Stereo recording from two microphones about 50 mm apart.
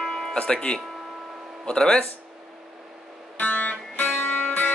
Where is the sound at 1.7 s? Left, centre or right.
Centre.